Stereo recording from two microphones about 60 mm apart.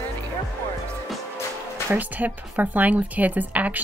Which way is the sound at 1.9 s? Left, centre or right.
Right.